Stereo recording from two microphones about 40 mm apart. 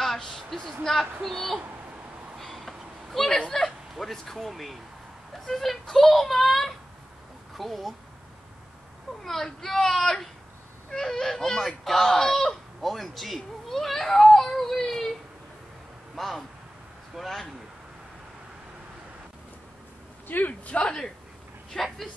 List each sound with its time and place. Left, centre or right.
0.0 s a sound: centre
1.2 s speech: centre
2.4 s a sound: centre
3.4 s speech: centre
9.2 s speech: centre
16.2 s speech: centre
20.2 s speech: left
20.6 s speech: left
21.7 s speech: centre